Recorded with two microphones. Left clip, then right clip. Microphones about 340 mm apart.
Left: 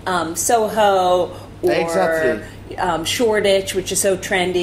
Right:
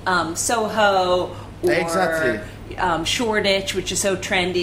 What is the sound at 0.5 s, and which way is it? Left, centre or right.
A man's voice, right.